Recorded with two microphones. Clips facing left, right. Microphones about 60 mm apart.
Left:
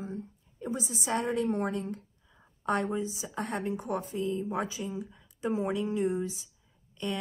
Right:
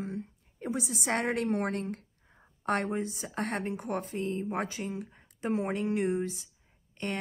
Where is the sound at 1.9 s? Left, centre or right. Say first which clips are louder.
Left 1 dB; right.